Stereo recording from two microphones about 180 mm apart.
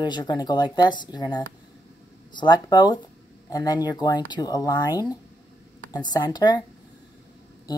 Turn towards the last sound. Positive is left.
turn(degrees=25)  # may be behind; listen again after turning